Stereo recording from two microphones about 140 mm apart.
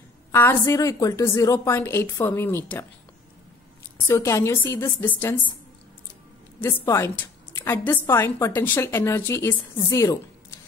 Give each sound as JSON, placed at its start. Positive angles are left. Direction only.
{"t": 0.3, "sound": "a woman's voice", "side_deg": 15}
{"t": 4.1, "sound": "a woman's voice", "side_deg": 15}
{"t": 6.6, "sound": "a woman's voice", "side_deg": 15}